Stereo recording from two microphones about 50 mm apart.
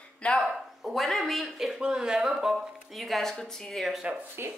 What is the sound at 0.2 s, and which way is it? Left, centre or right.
Speech, left.